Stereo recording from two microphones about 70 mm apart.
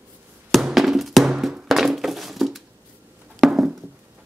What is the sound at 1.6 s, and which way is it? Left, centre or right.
Thunk, centre.